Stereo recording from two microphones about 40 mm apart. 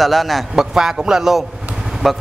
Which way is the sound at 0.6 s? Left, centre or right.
Centre.